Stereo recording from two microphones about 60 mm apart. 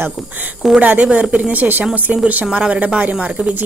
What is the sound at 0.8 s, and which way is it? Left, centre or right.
A woman's voice, right.